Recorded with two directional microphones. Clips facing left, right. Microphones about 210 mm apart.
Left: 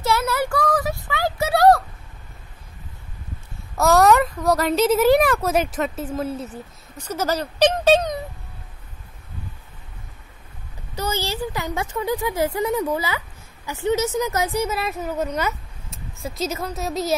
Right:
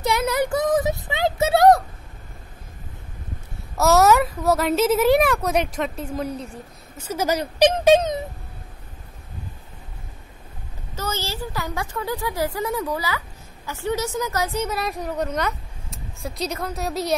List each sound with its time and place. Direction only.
0.0 s child singing: 15° right (ahead or behind)
3.7 s a woman's voice: 5° right (ahead or behind)
7.0 s speech: 10° right (ahead or behind)
11.0 s a woman's voice: 15° left (ahead or behind)
14.7 s speech: 5° left (ahead or behind)